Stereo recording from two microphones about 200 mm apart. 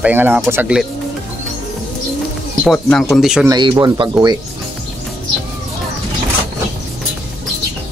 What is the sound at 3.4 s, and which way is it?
Speech, 20° right (ahead or behind).